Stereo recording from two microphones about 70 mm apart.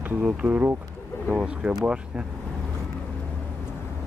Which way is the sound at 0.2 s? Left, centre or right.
Right.